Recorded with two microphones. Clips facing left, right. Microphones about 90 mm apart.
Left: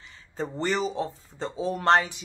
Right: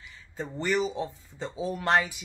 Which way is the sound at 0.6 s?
35° left (ahead or behind).